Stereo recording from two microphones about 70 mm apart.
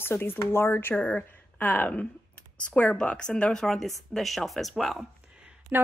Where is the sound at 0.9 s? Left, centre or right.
Left; by 5.0 s centre.